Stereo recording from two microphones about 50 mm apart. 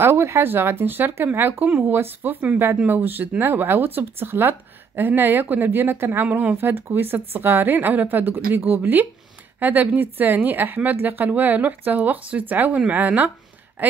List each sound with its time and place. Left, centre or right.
0.0 s speech: right
1.6 s a woman's voice: right
2.0 s a woman's voice: right
6.2 s a woman's voice: right